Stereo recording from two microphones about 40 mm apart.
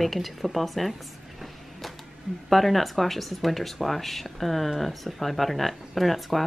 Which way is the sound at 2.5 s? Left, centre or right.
Centre.